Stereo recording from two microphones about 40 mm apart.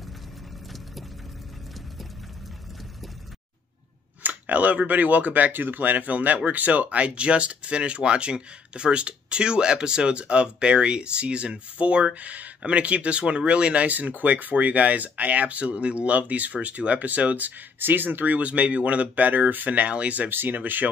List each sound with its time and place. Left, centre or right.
4.2 s speech: right
13.8 s speech: right
17.7 s speech: right
18.5 s speech: right
20.2 s speech: right